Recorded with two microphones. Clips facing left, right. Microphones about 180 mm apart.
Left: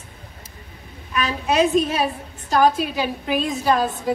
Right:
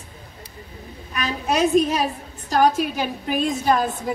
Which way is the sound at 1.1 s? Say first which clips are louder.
Left 3 dB; 40° right (ahead or behind).